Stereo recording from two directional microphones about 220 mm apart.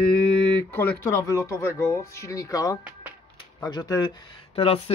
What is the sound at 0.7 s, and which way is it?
Speech, 10° left (ahead or behind).